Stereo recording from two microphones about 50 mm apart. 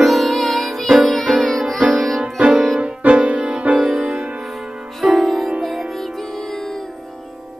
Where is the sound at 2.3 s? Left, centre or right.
Right.